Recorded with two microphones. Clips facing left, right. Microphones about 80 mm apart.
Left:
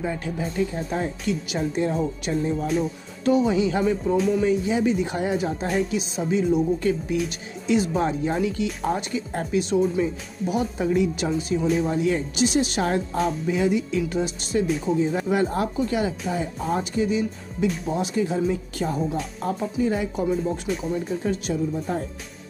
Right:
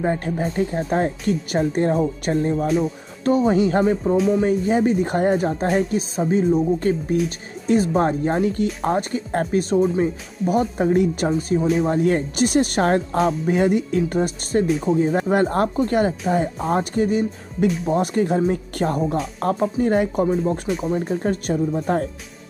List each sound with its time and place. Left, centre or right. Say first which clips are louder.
0.0 s speech: right 6 dB; right
4.4 s speech: right 3 dB; right
17.6 s speech: right 4 dB; centre
17.9 s speech: right 5 dB; right
20.6 s speech: right 3 dB; centre
20.9 s speech: right 4 dB; right